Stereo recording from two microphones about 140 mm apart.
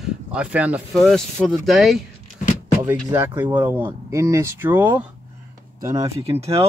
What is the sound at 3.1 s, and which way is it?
Speech, 20° right (ahead or behind).